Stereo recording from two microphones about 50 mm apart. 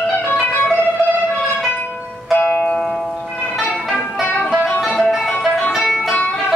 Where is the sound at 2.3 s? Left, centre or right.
Left.